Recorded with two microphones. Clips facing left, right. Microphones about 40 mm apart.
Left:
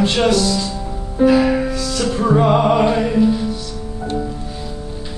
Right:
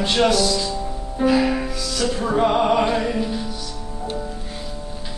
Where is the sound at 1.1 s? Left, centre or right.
Centre.